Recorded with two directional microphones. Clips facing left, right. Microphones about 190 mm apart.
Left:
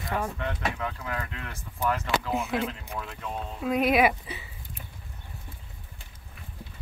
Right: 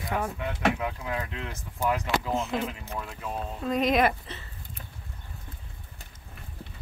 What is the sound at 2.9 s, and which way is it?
Speech, 5° right (ahead or behind).